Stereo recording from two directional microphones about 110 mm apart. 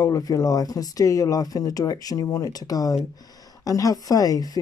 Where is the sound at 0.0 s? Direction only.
30° left (ahead or behind).